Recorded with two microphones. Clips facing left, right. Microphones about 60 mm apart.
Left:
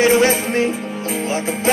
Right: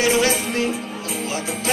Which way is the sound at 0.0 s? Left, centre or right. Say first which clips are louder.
Left 5 dB; left.